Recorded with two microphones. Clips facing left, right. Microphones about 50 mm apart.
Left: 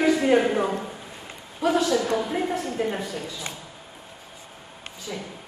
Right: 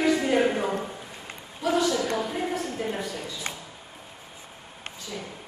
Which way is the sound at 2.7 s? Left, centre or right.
Left.